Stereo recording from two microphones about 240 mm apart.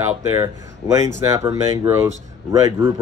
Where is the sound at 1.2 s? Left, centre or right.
Centre.